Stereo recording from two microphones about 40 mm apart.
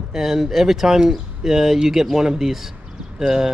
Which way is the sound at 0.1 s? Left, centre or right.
Centre.